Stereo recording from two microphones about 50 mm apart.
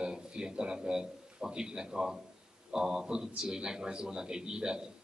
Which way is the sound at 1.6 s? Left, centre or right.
Centre.